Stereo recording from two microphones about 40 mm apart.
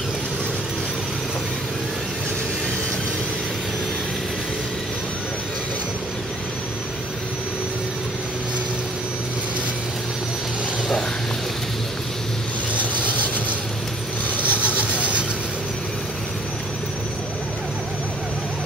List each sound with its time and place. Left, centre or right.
12.7 s vehicle: right